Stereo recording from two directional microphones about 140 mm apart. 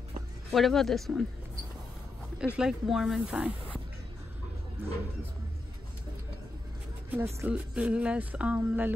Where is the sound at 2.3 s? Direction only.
5° right (ahead or behind).